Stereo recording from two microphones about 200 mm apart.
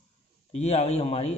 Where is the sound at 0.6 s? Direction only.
30° left (ahead or behind).